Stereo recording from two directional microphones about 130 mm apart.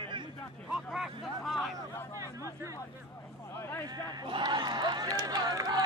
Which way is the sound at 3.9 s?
30° right (ahead or behind).